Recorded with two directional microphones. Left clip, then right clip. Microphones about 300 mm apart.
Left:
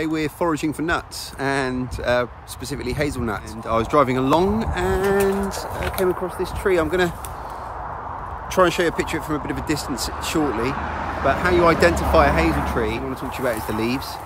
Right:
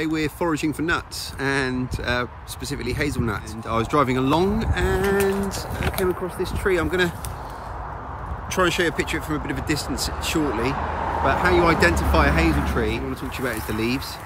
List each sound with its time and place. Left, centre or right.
0.0 s speech: centre
8.5 s speech: centre
10.8 s speech: right
11.2 s speech: centre